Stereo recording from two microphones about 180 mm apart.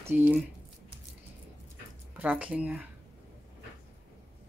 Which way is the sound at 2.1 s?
10° right (ahead or behind).